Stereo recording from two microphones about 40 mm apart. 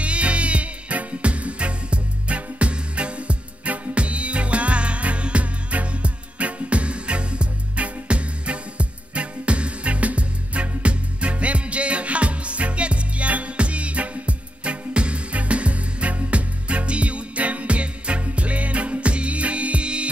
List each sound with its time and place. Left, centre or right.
0.0 s music: right